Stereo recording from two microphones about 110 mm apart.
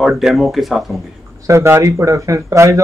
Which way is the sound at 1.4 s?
25° right (ahead or behind).